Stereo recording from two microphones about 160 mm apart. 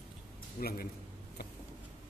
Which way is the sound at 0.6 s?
70° left (ahead or behind).